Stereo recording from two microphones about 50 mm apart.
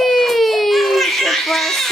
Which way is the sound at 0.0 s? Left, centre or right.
Centre.